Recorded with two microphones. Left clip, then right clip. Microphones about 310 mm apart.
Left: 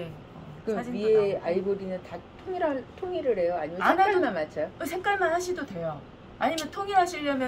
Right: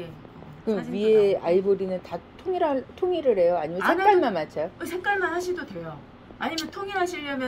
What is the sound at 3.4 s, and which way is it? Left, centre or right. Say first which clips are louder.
Speech: right 4 dB; right.